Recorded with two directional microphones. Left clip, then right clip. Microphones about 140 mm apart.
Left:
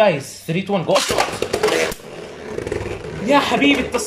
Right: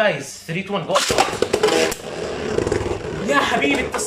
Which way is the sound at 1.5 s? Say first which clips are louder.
Right 1 dB; 5° right (ahead or behind).